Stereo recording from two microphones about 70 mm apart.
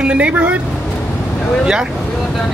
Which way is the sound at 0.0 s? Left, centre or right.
Centre.